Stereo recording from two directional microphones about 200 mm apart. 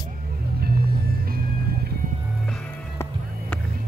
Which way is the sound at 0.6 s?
50° right (ahead or behind).